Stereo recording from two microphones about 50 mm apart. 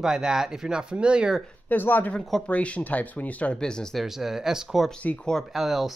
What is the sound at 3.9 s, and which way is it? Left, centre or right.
Speech, centre.